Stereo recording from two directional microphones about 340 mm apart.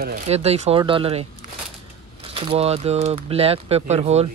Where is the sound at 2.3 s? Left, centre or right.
Centre.